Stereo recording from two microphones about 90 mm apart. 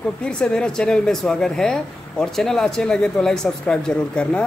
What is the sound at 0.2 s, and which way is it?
Speech, 10° left (ahead or behind).